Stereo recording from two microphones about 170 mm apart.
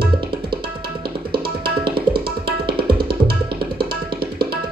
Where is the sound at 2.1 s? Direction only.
65° right (ahead or behind).